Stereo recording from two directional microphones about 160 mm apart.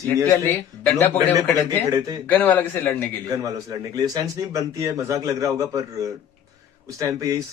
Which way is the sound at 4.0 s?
20° right (ahead or behind).